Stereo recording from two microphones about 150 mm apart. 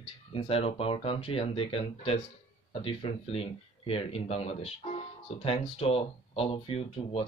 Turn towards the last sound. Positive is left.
turn(degrees=40)  # may be behind; listen again after turning